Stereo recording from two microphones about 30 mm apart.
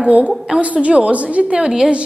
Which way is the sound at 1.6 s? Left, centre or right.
Right.